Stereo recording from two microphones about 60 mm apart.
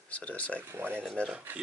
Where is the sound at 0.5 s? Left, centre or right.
Right.